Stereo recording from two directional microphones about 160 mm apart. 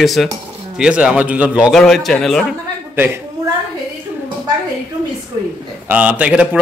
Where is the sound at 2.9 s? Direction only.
10° right (ahead or behind).